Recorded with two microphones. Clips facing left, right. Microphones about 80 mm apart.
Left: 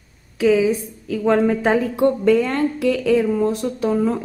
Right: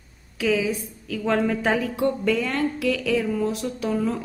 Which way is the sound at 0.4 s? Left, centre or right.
Left.